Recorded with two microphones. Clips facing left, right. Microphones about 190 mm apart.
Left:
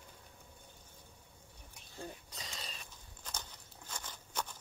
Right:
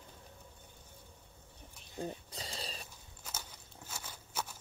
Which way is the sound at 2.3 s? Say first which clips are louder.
Right 4 dB; 30° right (ahead or behind).